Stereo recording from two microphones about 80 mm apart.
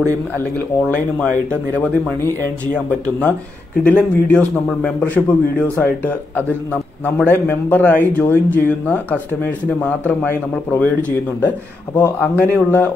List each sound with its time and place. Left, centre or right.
0.6 s speech: left